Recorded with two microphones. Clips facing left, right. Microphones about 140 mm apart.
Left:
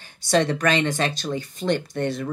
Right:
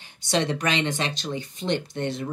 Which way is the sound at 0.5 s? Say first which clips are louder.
Left 4 dB; 20° right (ahead or behind).